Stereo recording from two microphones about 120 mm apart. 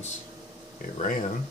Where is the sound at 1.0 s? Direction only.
90° left.